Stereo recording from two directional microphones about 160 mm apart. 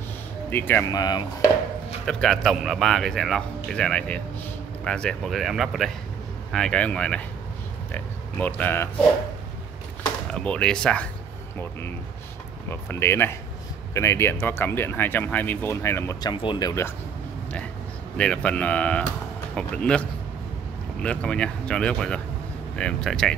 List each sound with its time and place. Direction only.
0.5 s speech: 10° left (ahead or behind)
0.9 s a sound: 25° left (ahead or behind)
2.0 s speech: 5° left (ahead or behind)
10.3 s speech: 5° left (ahead or behind)
12.6 s speech: 15° left (ahead or behind)
18.1 s speech: 5° left (ahead or behind)